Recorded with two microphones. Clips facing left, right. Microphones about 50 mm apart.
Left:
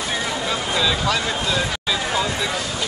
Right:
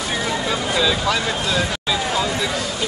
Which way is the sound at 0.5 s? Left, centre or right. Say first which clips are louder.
Right 1 dB; centre.